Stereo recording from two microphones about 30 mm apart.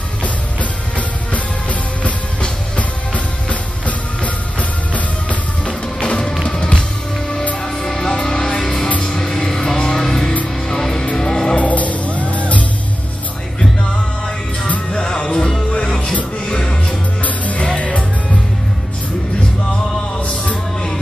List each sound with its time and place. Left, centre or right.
0.2 s music: left
3.4 s music: left
5.7 s music: left
7.6 s music: centre
8.1 s music: left
11.5 s music: left
14.9 s music: left
16.0 s music: left
16.4 s music: left
17.7 s music: left